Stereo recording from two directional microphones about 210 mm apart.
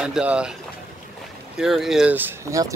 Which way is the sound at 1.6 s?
Centre (ahead or behind).